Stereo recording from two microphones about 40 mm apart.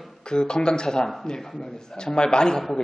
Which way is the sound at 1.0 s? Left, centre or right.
Centre.